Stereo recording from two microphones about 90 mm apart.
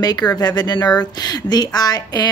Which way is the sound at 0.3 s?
50° left (ahead or behind).